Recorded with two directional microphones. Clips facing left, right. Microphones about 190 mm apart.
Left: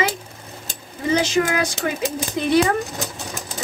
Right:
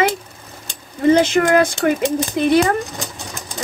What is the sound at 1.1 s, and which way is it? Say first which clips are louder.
Speech: right 5 dB; 55° right (ahead or behind).